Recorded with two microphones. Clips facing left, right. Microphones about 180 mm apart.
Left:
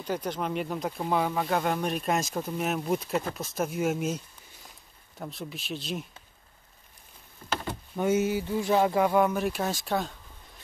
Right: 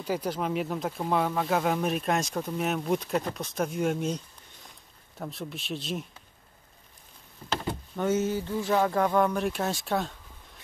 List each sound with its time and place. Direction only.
0.0 s speech: 5° right (ahead or behind)
7.5 s speech: 10° left (ahead or behind)